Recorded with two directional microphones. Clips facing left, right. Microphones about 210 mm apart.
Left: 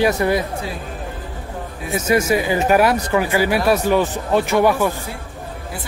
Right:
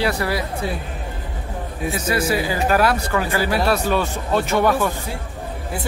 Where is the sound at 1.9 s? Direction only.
20° left (ahead or behind).